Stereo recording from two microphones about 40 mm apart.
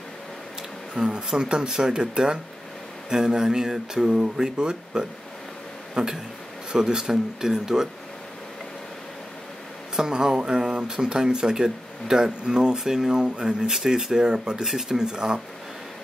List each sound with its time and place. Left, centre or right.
0.9 s speech: centre
9.9 s speech: centre